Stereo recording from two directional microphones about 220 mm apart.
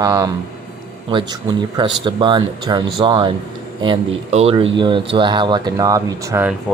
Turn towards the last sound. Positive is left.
turn(degrees=-10)  # may be behind; listen again after turning